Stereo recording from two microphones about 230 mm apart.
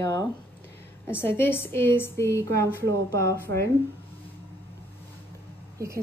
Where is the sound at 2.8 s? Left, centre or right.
Right.